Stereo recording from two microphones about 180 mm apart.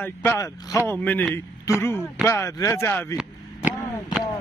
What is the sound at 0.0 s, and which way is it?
A man's voice, 10° left (ahead or behind).